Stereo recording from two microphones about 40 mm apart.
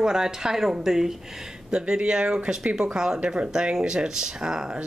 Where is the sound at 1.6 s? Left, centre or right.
Right.